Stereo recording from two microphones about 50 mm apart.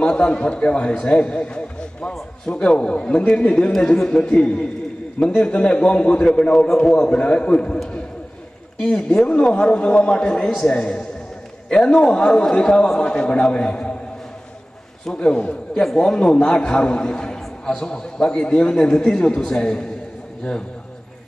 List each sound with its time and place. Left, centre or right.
0.0 s a man's voice: centre
15.1 s a man's voice: centre